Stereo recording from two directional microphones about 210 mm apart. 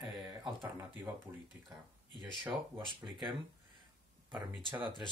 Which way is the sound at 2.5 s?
20° right (ahead or behind).